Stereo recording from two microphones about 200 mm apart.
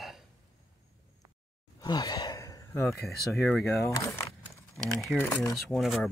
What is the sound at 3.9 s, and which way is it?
Speech, 15° left (ahead or behind).